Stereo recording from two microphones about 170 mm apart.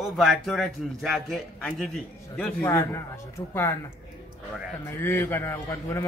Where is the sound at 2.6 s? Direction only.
15° left (ahead or behind).